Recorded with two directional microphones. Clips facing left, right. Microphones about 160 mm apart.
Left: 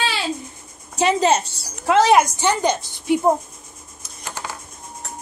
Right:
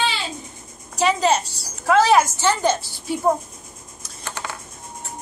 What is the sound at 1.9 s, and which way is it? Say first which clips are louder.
A woman's voice: left 1 dB; 15° left (ahead or behind).